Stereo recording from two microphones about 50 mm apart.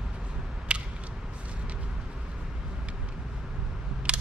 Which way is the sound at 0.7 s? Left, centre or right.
Right.